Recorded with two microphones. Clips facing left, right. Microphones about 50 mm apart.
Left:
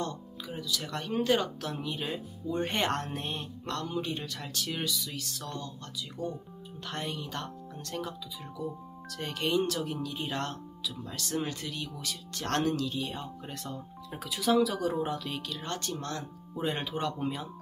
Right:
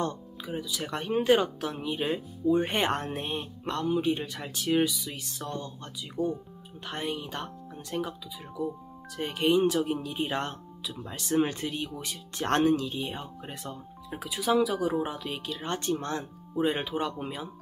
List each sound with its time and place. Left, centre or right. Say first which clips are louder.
0.5 s speech: right 3 dB; right
16.5 s speech: right 5 dB; centre